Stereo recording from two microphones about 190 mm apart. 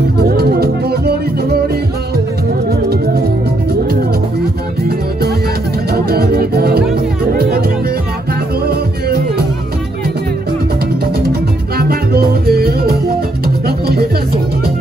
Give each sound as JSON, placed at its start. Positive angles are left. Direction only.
{"t": 0.2, "sound": "music", "side_deg": -55}
{"t": 5.9, "sound": "music", "side_deg": -55}
{"t": 11.7, "sound": "music", "side_deg": -55}